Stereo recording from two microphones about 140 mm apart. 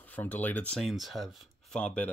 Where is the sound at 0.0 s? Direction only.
10° left (ahead or behind).